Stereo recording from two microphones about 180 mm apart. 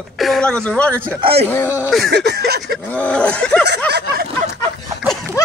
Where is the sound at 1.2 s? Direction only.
35° right (ahead or behind).